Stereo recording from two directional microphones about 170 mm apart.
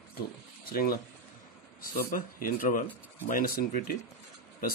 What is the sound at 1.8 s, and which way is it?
A man's voice, 60° left (ahead or behind).